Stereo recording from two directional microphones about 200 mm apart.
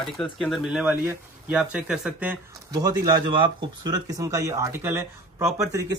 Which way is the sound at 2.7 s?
20° right (ahead or behind).